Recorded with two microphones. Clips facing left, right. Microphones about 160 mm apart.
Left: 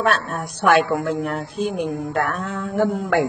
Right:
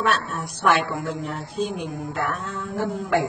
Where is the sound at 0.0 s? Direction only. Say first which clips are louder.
Left 3 dB; 55° left (ahead or behind).